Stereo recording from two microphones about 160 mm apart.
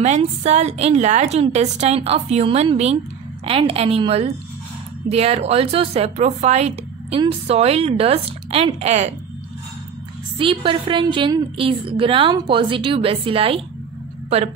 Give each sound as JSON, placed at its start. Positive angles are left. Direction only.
{"t": 0.0, "sound": "a woman's voice", "side_deg": -45}
{"t": 10.3, "sound": "a woman's voice", "side_deg": -35}